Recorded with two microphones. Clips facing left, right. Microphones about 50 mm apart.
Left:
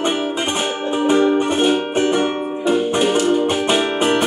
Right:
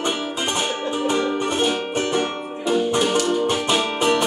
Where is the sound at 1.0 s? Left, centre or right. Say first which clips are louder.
Left 8 dB; left.